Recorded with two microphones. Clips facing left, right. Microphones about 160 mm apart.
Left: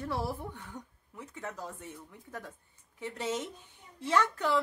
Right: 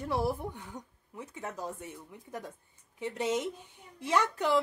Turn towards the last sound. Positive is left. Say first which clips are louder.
# right 1 dB
turn(degrees=-15)  # may be behind; listen again after turning